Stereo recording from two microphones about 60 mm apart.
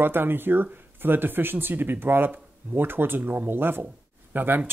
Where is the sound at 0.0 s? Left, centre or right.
Right.